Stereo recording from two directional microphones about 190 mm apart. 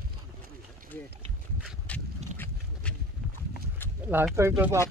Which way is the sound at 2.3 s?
10° left (ahead or behind).